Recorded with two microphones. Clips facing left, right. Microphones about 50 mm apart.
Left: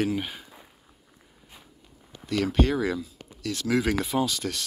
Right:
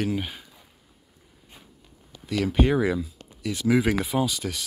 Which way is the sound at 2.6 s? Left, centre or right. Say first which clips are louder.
Right 3 dB; centre.